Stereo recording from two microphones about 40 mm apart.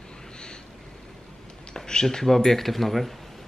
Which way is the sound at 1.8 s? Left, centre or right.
Centre.